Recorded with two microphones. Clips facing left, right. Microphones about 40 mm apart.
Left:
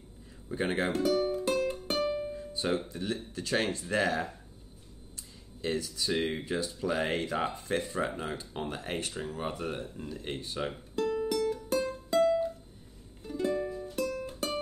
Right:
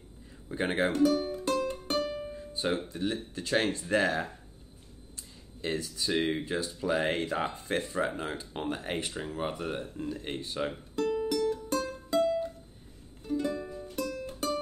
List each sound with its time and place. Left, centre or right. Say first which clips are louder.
0.5 s speech: even; centre
0.8 s speech: right 4 dB; centre
1.3 s music: left 1 dB; centre
2.2 s music: even; centre
2.7 s speech: right 1 dB; right
5.7 s speech: even; centre
6.3 s speech: right 1 dB; centre
7.5 s speech: even; centre
8.0 s speech: right 1 dB; centre
10.6 s music: right 1 dB; centre